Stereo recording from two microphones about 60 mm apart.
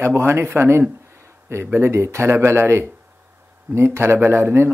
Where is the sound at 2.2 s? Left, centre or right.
Right.